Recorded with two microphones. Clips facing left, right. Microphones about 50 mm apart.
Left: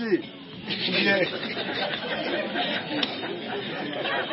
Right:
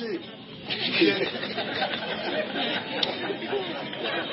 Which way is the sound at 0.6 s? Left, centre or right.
Centre.